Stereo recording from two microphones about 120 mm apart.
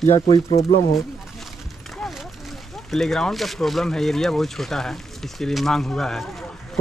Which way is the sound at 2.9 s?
5° left (ahead or behind).